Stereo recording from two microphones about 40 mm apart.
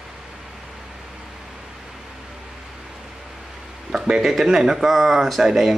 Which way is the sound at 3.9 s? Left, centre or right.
Centre.